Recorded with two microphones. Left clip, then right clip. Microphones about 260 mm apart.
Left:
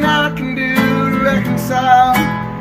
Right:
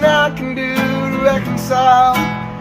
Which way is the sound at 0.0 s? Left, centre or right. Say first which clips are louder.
Right 2 dB; centre.